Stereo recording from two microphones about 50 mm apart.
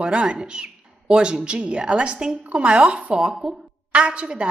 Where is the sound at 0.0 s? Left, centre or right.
Centre.